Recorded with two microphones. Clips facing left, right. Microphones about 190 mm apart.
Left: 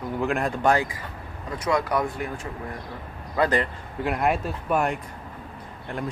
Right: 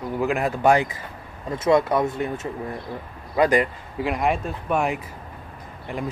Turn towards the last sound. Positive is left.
turn(degrees=0)  # may be behind; listen again after turning